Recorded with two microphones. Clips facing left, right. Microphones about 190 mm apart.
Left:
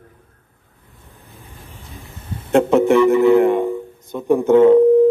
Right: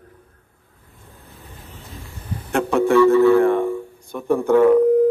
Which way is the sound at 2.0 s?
25° left (ahead or behind).